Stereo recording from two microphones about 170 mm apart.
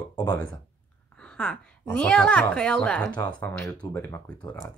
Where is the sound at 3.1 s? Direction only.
25° left (ahead or behind).